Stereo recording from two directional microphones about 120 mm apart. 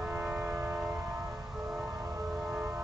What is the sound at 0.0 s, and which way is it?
Vehicle, 15° right (ahead or behind).